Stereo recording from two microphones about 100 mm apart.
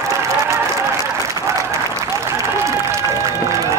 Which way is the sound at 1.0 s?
30° right (ahead or behind).